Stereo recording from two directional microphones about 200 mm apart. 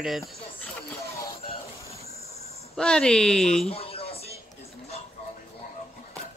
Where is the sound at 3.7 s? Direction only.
30° left (ahead or behind).